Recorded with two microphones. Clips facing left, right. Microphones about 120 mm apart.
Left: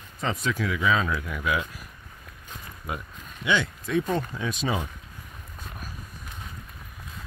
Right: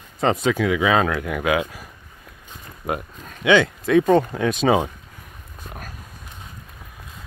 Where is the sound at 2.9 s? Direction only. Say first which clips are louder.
Right 8 dB; 75° right (ahead or behind).